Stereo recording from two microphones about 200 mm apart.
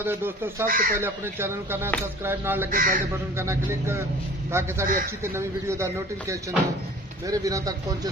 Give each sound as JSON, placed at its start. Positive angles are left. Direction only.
{"t": 0.0, "sound": "speech", "side_deg": -10}
{"t": 0.7, "sound": "speech", "side_deg": -45}
{"t": 0.9, "sound": "speech", "side_deg": -10}
{"t": 2.7, "sound": "speech", "side_deg": -45}
{"t": 3.3, "sound": "speech", "side_deg": -15}